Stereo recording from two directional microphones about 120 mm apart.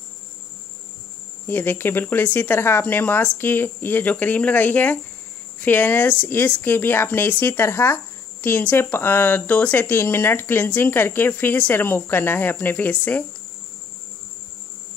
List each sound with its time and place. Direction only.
1.4 s speech: 15° left (ahead or behind)